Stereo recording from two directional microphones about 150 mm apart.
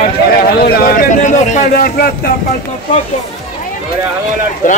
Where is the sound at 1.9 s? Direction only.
85° left.